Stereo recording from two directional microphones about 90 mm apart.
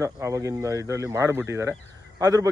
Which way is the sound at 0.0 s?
35° right (ahead or behind).